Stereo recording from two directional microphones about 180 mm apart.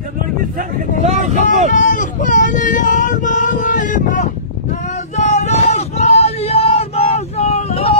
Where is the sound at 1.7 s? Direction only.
45° left (ahead or behind).